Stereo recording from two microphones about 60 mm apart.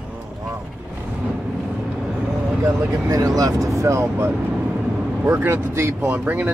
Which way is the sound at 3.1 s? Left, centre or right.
Right.